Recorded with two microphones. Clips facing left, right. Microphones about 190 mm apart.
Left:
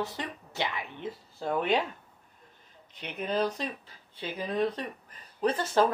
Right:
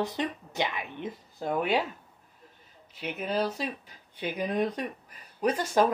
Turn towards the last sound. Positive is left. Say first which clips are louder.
# right 1 dB
turn(degrees=-10)  # may be behind; listen again after turning